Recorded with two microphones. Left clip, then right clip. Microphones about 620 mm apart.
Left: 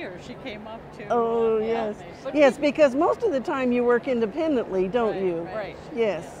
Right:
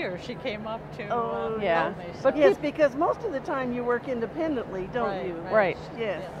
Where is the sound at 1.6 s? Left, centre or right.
Right.